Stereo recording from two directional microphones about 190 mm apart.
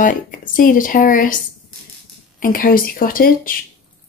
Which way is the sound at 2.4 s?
50° left (ahead or behind).